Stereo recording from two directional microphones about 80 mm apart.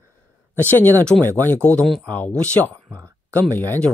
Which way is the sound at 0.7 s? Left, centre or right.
Left.